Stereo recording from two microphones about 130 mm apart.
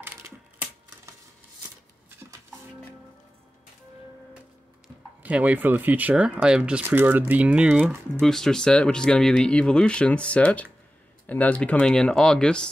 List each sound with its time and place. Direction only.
0.0 s typewriter: 15° right (ahead or behind)
4.8 s speech: 10° right (ahead or behind)
8.2 s speech: 5° left (ahead or behind)